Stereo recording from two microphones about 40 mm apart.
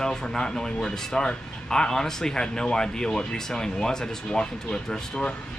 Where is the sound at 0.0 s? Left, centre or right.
Centre.